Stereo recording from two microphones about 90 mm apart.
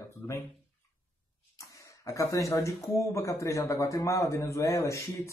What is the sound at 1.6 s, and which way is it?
Throat clearing, 35° left (ahead or behind).